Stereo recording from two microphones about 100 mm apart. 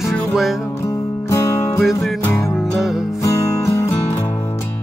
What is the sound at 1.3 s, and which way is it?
Music, 30° left (ahead or behind).